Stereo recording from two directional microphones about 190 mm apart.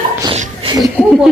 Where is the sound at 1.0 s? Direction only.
10° left (ahead or behind).